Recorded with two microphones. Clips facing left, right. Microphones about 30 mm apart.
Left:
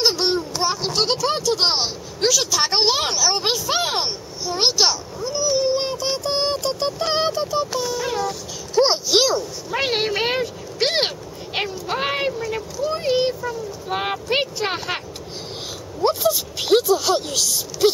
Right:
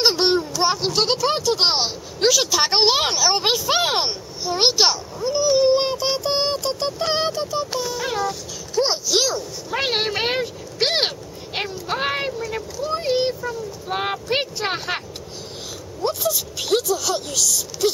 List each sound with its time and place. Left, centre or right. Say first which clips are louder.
0.0 s a sound: right 2 dB; centre
0.8 s speech: right 1 dB; centre
7.8 s speech: left 1 dB; centre
8.8 s speech: left 3 dB; centre
9.7 s speech: even; centre
16.3 s speech: left 3 dB; centre